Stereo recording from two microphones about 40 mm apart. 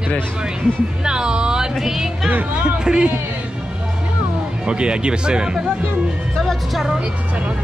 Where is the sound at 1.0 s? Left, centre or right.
Centre.